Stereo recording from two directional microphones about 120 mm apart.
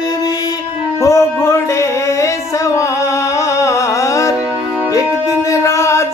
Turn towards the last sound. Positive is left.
turn(degrees=25)  # may be behind; listen again after turning